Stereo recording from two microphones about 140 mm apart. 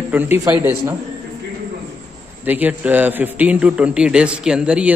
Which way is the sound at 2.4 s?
10° right (ahead or behind).